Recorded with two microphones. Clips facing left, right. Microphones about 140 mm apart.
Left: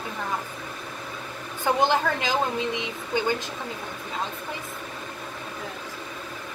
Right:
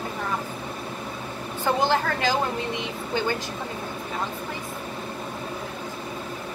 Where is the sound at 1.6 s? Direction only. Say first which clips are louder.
Left 1 dB; 20° left (ahead or behind).